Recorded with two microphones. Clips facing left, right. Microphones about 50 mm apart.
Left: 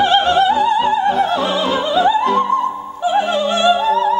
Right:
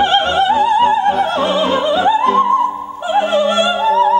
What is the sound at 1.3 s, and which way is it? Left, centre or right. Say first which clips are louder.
Music: right 2 dB; right.